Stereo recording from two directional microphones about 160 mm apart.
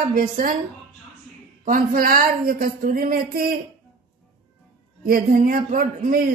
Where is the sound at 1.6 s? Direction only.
60° right (ahead or behind).